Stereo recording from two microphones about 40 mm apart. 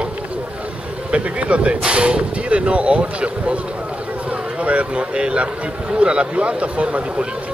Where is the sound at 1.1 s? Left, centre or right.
Right.